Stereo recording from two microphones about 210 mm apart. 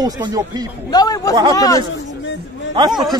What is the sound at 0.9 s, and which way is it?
Speech, 20° left (ahead or behind).